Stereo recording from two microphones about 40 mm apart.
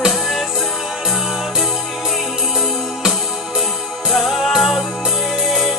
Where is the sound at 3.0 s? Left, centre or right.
Centre.